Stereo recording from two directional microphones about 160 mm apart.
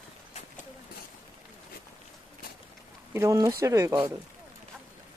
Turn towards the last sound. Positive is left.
turn(degrees=-20)  # may be behind; listen again after turning